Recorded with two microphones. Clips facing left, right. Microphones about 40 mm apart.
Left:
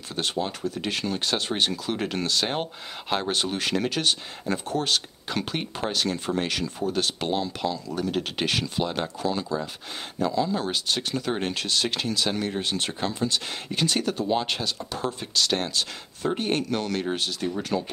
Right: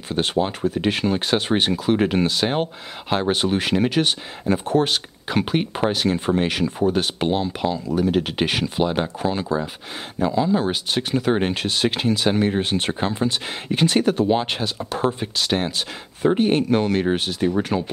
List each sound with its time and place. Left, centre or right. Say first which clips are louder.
0.1 s speech: right 7 dB; right